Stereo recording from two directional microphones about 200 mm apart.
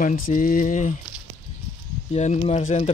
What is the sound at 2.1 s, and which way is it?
Speech, 35° left (ahead or behind).